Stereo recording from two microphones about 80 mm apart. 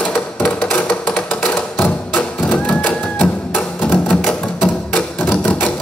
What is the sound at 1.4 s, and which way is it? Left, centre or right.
Music, left.